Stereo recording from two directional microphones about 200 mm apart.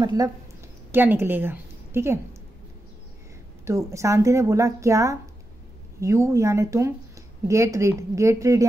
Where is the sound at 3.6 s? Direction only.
15° right (ahead or behind).